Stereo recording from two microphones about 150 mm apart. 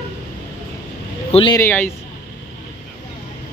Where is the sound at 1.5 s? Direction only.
15° left (ahead or behind).